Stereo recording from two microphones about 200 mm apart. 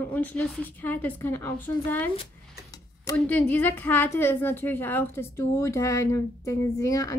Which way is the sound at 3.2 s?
5° left (ahead or behind).